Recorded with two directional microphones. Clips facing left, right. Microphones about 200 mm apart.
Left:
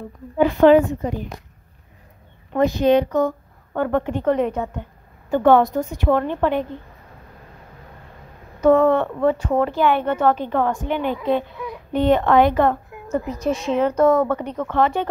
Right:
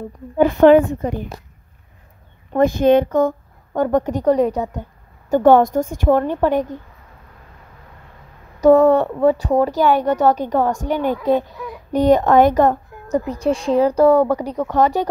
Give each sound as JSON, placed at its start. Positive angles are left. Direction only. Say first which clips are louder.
{"t": 0.4, "sound": "a woman's voice", "louder": "right 2 dB", "side_deg": -50}
{"t": 2.5, "sound": "a woman's voice", "louder": "right 3 dB", "side_deg": -50}
{"t": 8.5, "sound": "a sound", "louder": "right 4 dB", "side_deg": -35}
{"t": 9.2, "sound": "a woman's voice", "louder": "right 3 dB", "side_deg": -35}
{"t": 13.3, "sound": "a woman's voice", "louder": "right 4 dB", "side_deg": -30}